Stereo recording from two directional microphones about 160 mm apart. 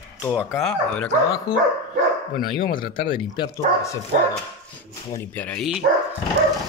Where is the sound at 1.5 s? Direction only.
25° left (ahead or behind).